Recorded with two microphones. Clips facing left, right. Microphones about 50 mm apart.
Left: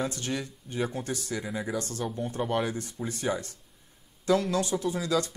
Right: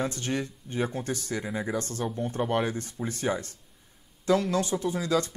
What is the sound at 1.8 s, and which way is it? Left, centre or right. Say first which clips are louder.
Speech: right 1 dB; right.